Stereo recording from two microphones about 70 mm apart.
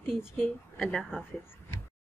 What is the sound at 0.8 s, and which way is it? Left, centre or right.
Speech, centre.